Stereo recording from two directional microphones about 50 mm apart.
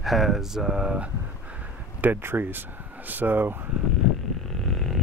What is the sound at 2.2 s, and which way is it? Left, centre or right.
Speech, right.